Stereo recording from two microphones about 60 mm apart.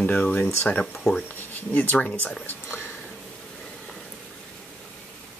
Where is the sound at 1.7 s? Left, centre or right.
Left.